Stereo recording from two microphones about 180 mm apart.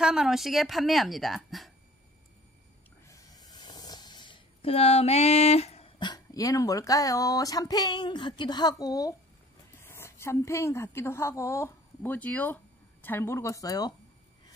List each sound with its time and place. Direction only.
0.0 s a woman's voice: 5° right (ahead or behind)
3.1 s a woman's voice: 20° left (ahead or behind)